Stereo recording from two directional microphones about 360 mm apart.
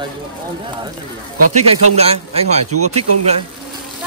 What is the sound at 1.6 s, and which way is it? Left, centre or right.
Speech, centre.